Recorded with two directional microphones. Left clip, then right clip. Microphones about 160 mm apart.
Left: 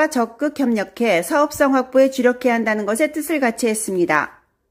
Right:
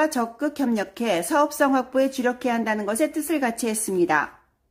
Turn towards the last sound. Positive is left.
turn(degrees=15)  # may be behind; listen again after turning